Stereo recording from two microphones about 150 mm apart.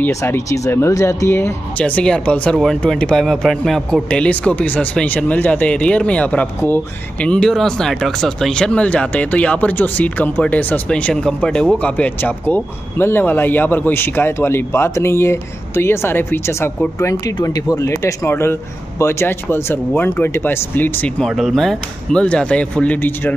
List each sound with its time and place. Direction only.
0.0 s speech: 15° left (ahead or behind)
21.3 s speech: centre (ahead or behind)